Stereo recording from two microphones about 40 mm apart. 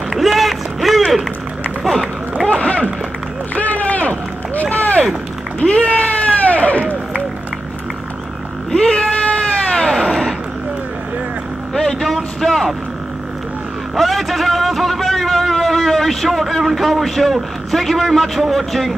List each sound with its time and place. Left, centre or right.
0.1 s run: centre
2.4 s run: left
5.6 s a sound: left
8.7 s cat: left
11.7 s vehicle: centre
13.9 s a sound: centre